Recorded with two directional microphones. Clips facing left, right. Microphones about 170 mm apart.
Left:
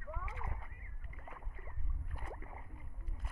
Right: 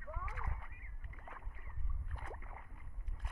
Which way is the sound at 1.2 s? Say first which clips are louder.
Left 2 dB; 10° left (ahead or behind).